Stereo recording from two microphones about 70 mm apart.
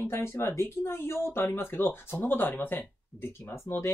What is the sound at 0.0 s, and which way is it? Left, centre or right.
Speech, left.